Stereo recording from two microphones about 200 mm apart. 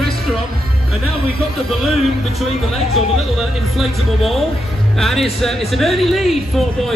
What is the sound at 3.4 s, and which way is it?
Speech, centre (ahead or behind).